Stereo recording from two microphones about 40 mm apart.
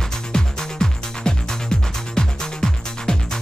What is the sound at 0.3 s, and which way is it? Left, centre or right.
Music, centre.